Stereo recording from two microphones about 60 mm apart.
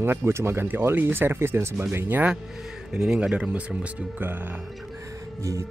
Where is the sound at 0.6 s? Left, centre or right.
Right.